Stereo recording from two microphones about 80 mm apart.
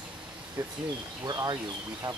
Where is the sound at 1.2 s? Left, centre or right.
Right.